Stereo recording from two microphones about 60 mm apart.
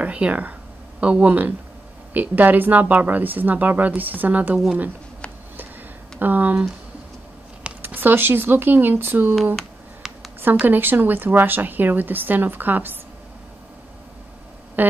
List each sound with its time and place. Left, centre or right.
0.0 s speech: right
6.1 s speech: right
7.8 s a woman's voice: right
10.0 s a sound: centre
10.6 s a woman's voice: right
14.8 s a sound: right